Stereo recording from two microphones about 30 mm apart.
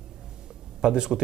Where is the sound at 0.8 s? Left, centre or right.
Right.